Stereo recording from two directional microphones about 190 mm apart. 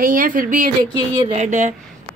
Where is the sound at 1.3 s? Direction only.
40° right (ahead or behind).